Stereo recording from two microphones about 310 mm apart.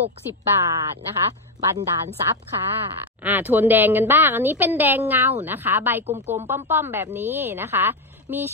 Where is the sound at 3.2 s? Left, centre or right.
Centre.